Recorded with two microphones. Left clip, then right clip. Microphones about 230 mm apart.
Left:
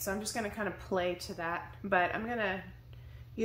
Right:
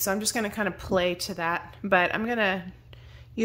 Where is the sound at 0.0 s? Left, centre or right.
Right.